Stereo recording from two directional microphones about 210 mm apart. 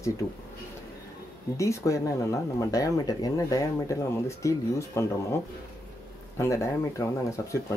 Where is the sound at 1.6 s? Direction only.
15° left (ahead or behind).